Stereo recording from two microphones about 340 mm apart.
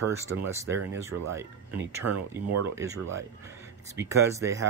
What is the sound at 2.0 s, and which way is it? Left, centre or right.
Speech, right.